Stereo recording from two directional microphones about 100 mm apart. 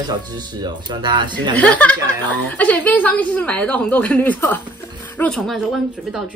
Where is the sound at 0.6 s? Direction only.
50° right (ahead or behind).